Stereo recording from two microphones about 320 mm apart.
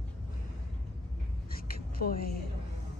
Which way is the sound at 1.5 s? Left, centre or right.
Left.